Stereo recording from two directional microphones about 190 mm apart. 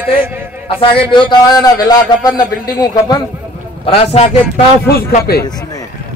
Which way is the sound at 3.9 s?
30° left (ahead or behind).